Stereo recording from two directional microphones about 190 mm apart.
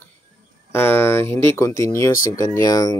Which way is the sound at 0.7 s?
10° left (ahead or behind).